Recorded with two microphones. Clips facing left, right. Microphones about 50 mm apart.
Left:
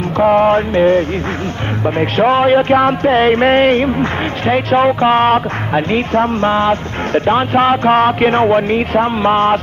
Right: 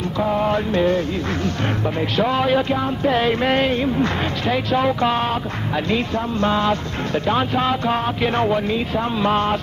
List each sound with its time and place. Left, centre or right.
0.2 s speech: left
2.7 s music: left
3.1 s speech: left